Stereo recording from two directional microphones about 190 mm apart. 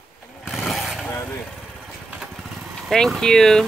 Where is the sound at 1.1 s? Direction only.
15° left (ahead or behind).